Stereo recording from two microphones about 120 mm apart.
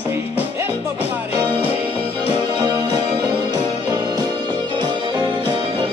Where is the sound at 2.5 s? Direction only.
40° right (ahead or behind).